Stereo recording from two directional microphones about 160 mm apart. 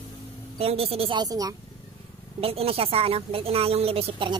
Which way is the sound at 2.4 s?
35° right (ahead or behind).